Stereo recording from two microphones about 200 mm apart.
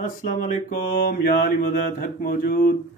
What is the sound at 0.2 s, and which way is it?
Speech, 45° left (ahead or behind).